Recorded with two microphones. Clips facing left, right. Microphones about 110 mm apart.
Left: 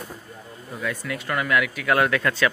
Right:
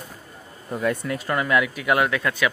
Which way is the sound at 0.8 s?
35° right (ahead or behind).